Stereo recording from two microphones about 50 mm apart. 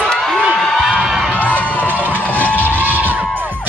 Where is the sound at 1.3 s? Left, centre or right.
Left.